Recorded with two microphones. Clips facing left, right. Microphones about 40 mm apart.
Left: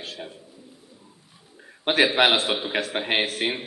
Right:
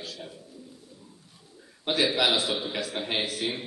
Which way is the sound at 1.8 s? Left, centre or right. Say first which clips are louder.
Left 5 dB; left.